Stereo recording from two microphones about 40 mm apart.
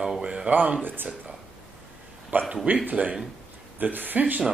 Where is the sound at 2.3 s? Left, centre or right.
Right.